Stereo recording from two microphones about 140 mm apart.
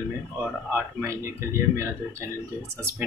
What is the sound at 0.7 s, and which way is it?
A man's voice, 20° right (ahead or behind).